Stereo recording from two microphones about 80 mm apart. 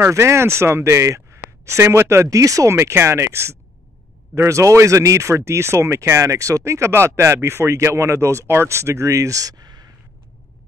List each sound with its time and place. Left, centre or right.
0.0 s speech: right